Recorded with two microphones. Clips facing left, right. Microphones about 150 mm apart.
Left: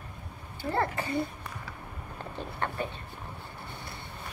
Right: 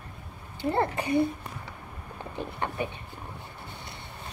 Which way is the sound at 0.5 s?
20° right (ahead or behind).